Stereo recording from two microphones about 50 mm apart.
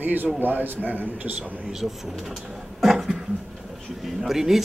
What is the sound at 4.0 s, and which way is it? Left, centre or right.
Speech, centre.